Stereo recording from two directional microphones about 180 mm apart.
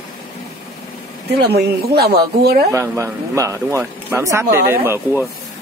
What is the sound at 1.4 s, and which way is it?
Speech, 65° right (ahead or behind).